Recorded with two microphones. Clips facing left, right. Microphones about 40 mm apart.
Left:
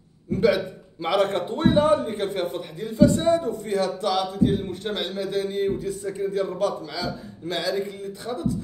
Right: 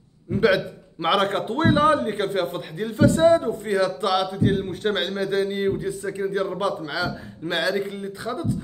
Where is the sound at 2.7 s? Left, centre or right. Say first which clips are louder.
Left 1 dB; right.